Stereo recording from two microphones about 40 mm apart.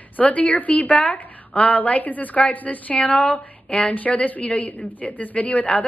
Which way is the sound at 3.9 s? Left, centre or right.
Left.